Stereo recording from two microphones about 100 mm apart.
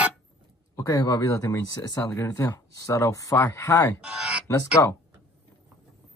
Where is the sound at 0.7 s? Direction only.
35° left (ahead or behind).